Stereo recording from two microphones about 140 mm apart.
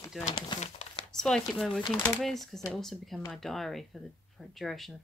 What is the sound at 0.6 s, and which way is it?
Crumpling, 50° left (ahead or behind).